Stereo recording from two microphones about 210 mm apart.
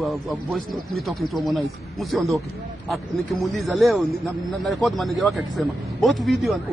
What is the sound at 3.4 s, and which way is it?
A man's voice, centre (ahead or behind).